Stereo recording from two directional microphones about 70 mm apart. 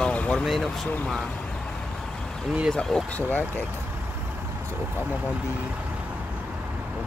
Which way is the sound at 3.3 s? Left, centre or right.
Left.